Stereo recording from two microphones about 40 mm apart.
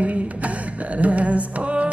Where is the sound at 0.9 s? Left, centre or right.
Right.